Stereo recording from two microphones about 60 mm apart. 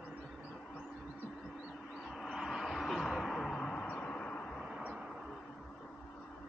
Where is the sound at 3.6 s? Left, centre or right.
Centre.